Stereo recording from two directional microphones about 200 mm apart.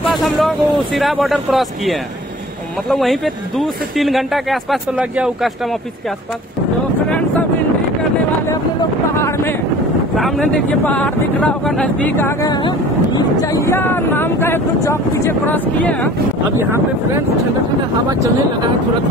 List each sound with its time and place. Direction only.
0.1 s speech: centre (ahead or behind)
10.1 s speech: centre (ahead or behind)